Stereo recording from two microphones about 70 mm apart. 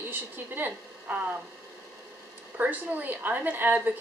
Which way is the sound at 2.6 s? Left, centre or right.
Right.